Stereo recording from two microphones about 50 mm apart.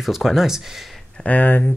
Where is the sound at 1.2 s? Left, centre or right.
Left.